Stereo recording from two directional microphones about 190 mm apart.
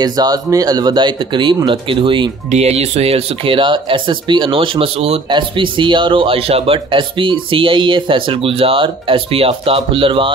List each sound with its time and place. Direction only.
0.0 s speech: 20° right (ahead or behind)